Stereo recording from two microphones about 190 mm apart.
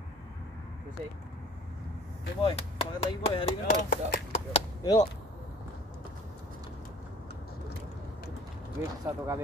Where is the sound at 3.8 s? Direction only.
40° left (ahead or behind).